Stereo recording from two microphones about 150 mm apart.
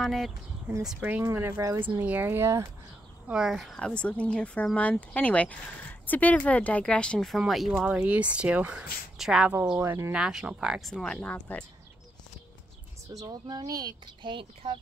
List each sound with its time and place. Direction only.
0.0 s speech: centre (ahead or behind)
0.8 s speech: 10° right (ahead or behind)
3.3 s speech: 5° right (ahead or behind)
9.8 s speech: 15° right (ahead or behind)
10.1 s speech: 5° right (ahead or behind); by 11.6 s 10° left (ahead or behind)
13.2 s speech: 25° right (ahead or behind)